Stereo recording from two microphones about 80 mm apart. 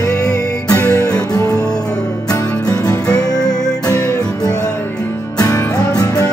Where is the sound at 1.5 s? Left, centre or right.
Centre.